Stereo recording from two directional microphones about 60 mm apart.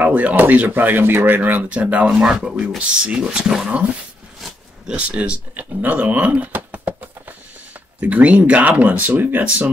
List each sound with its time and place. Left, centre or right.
0.0 s speech: right
4.8 s speech: centre